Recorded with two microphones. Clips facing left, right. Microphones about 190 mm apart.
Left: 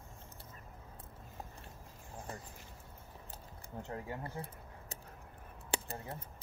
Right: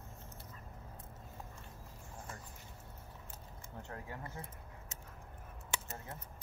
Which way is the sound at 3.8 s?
20° left (ahead or behind).